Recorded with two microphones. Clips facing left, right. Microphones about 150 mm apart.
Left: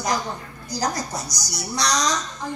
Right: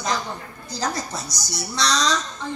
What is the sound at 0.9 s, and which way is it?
Speech, 25° right (ahead or behind).